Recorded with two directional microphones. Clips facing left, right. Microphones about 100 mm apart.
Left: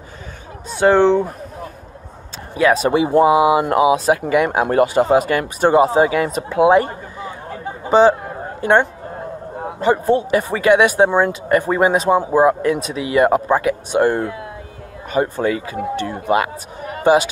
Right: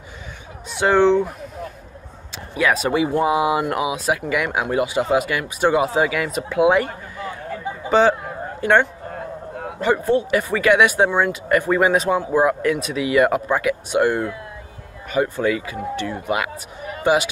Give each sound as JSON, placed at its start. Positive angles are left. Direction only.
{"t": 0.7, "sound": "speech", "side_deg": 35}
{"t": 2.5, "sound": "speech", "side_deg": 25}
{"t": 4.6, "sound": "speech", "side_deg": 45}
{"t": 7.9, "sound": "a sound", "side_deg": 25}
{"t": 9.6, "sound": "speech", "side_deg": 25}